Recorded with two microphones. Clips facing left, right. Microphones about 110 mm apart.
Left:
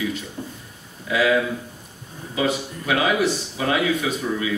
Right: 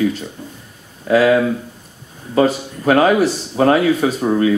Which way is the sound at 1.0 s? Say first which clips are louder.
Right 7 dB; 40° right (ahead or behind).